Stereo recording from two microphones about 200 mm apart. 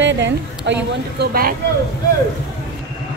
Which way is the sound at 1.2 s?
50° right (ahead or behind).